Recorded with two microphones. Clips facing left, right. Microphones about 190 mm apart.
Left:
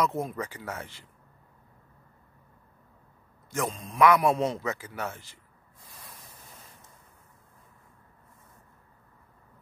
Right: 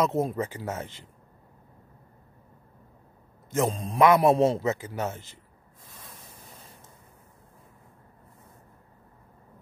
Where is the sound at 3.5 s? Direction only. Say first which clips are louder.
Right 4 dB; 30° right (ahead or behind).